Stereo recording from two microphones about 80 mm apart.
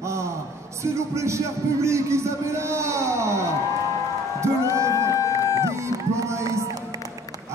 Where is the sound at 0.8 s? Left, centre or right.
Right.